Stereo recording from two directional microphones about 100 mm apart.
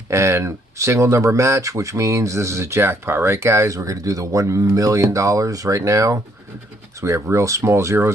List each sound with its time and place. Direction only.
0.1 s speech: 30° right (ahead or behind)